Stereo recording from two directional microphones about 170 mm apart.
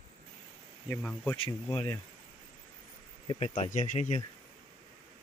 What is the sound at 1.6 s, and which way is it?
Speech, 20° left (ahead or behind).